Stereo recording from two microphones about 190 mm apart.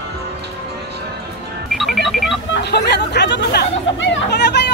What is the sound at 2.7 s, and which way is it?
Speech, 65° left (ahead or behind).